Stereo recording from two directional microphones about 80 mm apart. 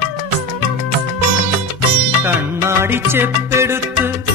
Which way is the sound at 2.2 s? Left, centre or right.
Right.